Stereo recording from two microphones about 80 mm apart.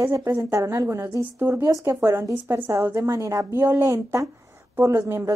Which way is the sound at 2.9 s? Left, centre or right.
Right.